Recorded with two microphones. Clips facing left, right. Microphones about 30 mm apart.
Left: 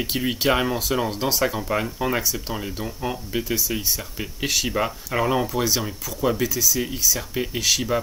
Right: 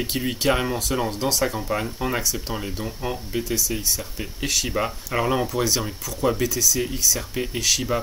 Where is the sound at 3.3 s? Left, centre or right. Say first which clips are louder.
Even; centre.